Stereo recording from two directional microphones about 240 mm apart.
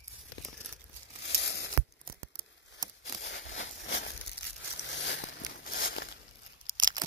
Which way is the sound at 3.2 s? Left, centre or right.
Left.